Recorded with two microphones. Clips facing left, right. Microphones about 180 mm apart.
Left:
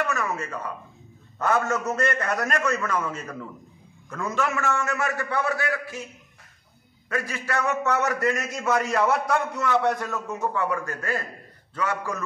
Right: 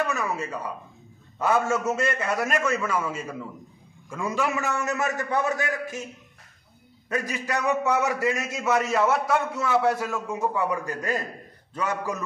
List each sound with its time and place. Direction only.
0.0 s a man's voice: 15° right (ahead or behind)
7.1 s a man's voice: 15° right (ahead or behind)